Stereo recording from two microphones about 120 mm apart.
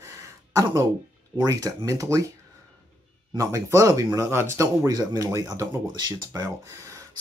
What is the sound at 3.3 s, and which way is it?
Speech, 25° right (ahead or behind).